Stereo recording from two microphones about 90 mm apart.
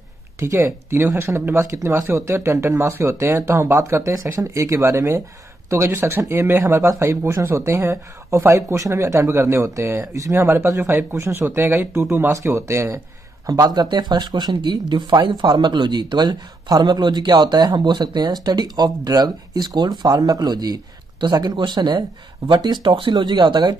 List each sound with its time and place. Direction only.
0.4 s speech: 30° right (ahead or behind)
13.5 s speech: 45° right (ahead or behind)
22.8 s speech: 80° right
23.1 s speech: 55° right (ahead or behind)